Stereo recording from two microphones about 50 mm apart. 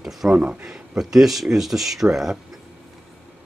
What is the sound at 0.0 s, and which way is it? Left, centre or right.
Speech, centre.